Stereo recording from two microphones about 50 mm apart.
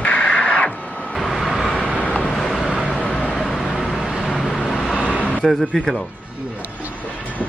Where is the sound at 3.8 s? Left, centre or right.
Centre.